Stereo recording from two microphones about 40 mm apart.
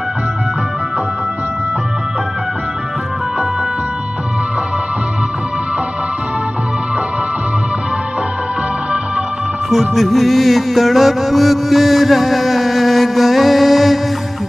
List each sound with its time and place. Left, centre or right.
9.7 s music: centre